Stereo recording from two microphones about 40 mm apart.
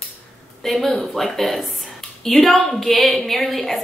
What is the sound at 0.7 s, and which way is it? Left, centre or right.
A woman's voice, centre.